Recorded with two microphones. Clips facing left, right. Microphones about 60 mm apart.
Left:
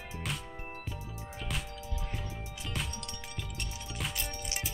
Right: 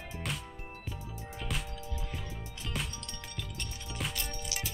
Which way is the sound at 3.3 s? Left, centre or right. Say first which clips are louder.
Even; centre.